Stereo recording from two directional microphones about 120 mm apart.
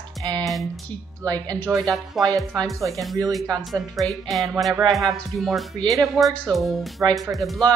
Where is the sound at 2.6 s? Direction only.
25° right (ahead or behind).